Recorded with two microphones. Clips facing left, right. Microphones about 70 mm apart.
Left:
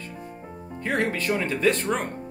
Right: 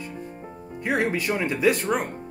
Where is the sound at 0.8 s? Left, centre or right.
Centre.